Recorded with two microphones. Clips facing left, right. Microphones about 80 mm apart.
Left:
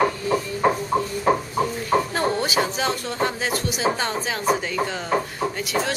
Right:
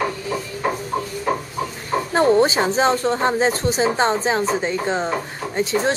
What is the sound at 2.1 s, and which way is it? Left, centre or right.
A woman's voice, right.